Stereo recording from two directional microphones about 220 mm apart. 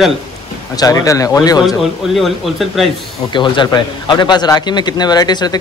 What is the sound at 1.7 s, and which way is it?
Speech, centre (ahead or behind).